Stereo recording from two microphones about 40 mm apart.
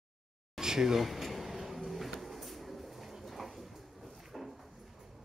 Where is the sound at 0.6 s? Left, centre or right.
Centre.